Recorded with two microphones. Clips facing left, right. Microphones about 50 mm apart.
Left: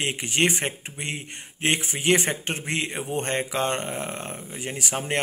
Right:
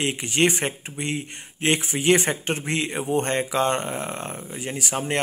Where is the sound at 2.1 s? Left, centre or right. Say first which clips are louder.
Right 2 dB; centre.